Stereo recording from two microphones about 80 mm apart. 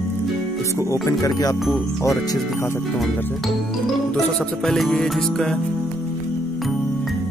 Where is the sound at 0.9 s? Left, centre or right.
Left.